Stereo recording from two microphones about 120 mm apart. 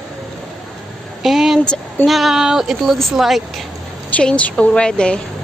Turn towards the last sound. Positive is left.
turn(degrees=10)  # may be behind; listen again after turning